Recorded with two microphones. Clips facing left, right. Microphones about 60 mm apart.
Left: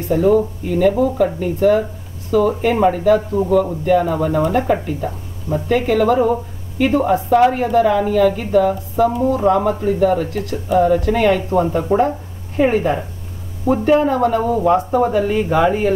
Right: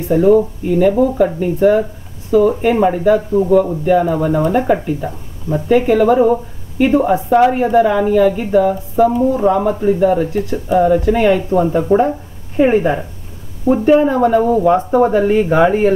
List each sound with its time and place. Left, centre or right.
0.1 s a woman's voice: centre
12.5 s a woman's voice: centre
15.1 s speech: right